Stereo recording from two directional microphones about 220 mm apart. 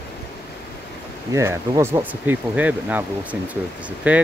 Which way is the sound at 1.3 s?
10° right (ahead or behind).